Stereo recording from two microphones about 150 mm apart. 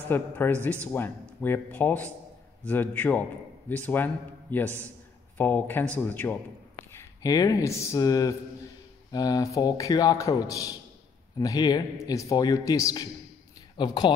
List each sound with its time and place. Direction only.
0.1 s a man's voice: 15° left (ahead or behind)
4.6 s a man's voice: 15° right (ahead or behind)
5.4 s a man's voice: 15° left (ahead or behind); by 14.1 s 30° left (ahead or behind)